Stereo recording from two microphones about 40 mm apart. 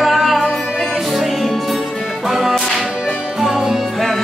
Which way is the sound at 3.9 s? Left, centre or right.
Centre.